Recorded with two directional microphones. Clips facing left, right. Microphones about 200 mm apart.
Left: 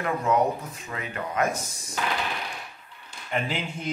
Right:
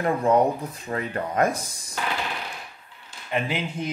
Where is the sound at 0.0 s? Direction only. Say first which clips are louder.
Right 4 dB; 30° right (ahead or behind).